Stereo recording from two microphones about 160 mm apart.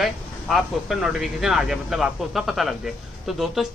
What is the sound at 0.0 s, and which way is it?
A man's voice, centre (ahead or behind).